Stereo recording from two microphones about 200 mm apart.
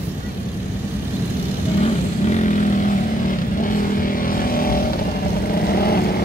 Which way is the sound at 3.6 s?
45° left (ahead or behind).